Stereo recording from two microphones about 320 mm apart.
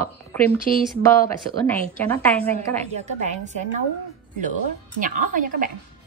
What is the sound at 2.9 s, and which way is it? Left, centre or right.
Speech, right.